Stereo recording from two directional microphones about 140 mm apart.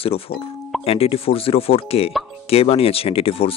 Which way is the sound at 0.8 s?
45° left (ahead or behind).